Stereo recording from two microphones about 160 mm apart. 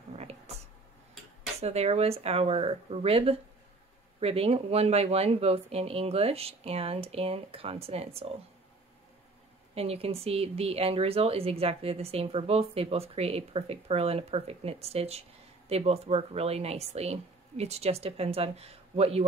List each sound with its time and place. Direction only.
0.1 s a sound: 40° right (ahead or behind)
1.6 s speech: 40° right (ahead or behind)
9.8 s speech: 40° right (ahead or behind)